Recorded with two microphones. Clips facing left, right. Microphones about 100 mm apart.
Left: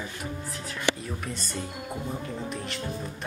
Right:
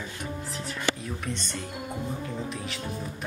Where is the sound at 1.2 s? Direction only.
5° left (ahead or behind).